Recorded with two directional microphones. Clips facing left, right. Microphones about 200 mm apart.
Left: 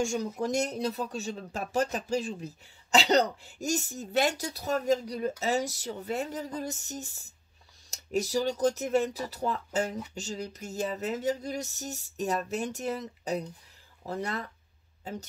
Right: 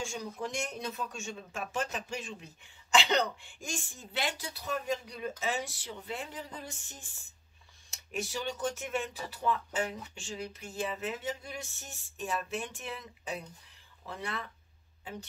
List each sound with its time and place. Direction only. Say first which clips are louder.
0.0 s speech: left 8 dB; 45° left (ahead or behind)